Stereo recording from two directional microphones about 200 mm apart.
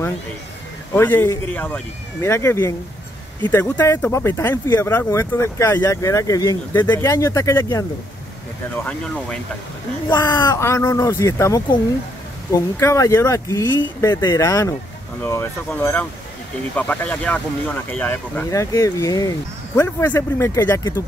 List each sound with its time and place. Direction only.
0.9 s speech: 10° left (ahead or behind)
8.8 s speech: 5° left (ahead or behind)
10.0 s speech: 20° left (ahead or behind)
13.7 s speech: 70° left (ahead or behind)
14.0 s speech: 20° left (ahead or behind)